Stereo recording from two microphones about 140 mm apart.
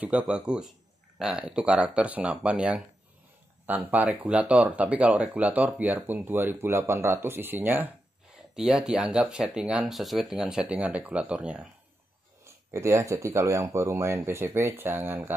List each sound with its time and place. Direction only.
0.0 s speech: 10° right (ahead or behind)
12.4 s speech: 20° right (ahead or behind)